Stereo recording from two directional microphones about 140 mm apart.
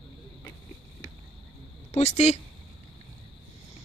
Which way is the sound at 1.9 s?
50° left (ahead or behind).